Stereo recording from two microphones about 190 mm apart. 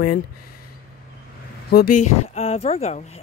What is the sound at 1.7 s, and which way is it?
Speech, 55° left (ahead or behind).